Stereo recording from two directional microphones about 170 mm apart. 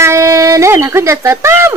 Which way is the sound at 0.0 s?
15° right (ahead or behind).